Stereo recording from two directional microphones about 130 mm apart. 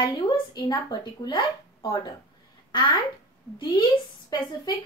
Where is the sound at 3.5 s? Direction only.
35° left (ahead or behind).